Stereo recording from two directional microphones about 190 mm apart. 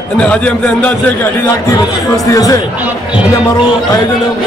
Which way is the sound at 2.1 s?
20° left (ahead or behind).